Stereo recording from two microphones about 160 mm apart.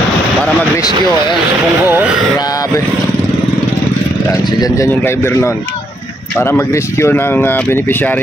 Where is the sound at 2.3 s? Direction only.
25° left (ahead or behind).